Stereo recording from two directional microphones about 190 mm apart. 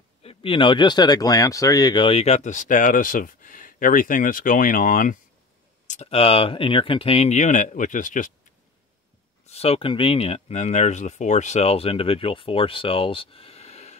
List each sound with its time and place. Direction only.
0.2 s speech: 30° left (ahead or behind)
9.5 s speech: 30° left (ahead or behind)